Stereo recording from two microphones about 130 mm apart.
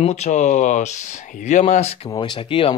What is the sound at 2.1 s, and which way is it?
Speech, 35° left (ahead or behind).